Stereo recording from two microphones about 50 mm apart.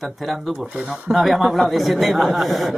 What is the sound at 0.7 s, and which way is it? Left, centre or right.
Speech, centre.